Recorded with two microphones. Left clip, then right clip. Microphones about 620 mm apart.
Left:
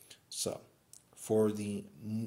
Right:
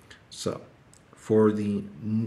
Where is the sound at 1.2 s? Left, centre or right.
Left.